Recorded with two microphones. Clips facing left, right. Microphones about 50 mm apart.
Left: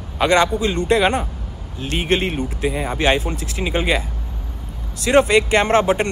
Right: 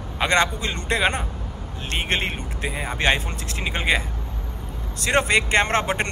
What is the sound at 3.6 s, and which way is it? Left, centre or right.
Speech, centre.